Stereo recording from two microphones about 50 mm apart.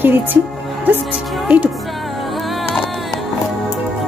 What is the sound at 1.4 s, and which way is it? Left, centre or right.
Speech, right.